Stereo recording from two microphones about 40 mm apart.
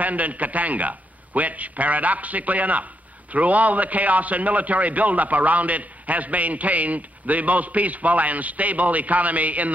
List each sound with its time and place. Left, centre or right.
0.0 s a man's voice: right